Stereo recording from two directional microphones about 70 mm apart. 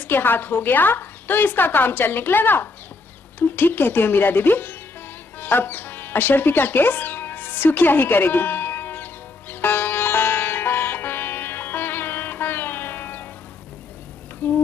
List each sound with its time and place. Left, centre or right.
0.0 s speech: left
5.4 s music: left
14.4 s a sound: left